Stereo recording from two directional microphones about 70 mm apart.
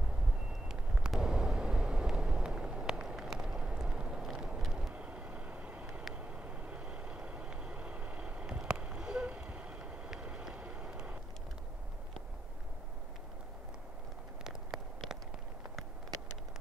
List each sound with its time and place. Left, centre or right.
0.7 s vehicle: centre
4.9 s vehicle: centre
14.4 s a sound: centre